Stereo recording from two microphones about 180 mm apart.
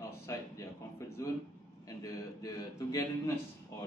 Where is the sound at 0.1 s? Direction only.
15° left (ahead or behind).